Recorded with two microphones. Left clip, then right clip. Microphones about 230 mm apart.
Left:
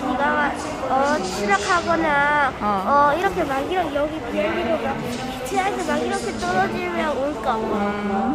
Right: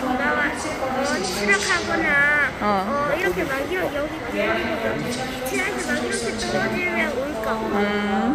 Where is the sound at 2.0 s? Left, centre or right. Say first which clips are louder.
Even; centre.